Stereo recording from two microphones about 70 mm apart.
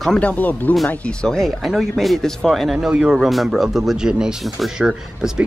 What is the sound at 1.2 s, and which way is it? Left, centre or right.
Speech, centre.